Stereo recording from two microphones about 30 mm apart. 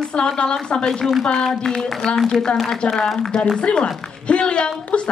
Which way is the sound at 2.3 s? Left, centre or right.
Left.